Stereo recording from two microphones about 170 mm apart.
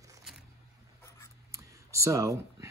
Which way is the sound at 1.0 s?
15° left (ahead or behind).